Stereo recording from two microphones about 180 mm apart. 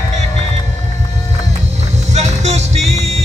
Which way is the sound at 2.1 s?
40° right (ahead or behind).